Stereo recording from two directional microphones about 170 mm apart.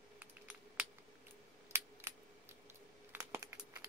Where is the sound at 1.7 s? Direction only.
15° right (ahead or behind).